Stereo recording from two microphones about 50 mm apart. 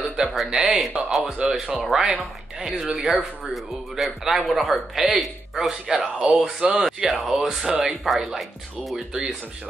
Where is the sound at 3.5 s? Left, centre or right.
Centre.